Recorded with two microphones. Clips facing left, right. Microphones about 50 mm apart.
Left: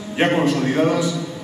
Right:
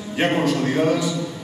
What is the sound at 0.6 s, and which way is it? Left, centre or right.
Speech, centre.